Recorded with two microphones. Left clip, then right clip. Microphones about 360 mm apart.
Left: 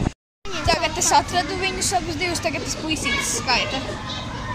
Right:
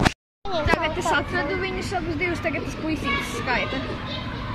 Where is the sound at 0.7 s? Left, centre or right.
Centre.